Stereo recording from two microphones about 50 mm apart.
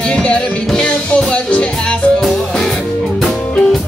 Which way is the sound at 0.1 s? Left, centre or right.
Left.